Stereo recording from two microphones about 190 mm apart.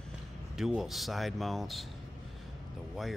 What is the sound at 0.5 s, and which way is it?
Speech, centre (ahead or behind).